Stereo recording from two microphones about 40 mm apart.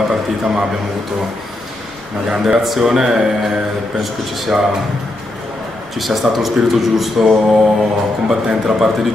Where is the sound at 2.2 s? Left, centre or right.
Centre.